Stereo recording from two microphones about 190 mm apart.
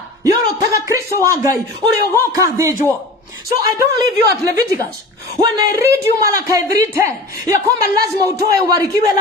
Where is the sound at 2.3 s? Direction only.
15° right (ahead or behind).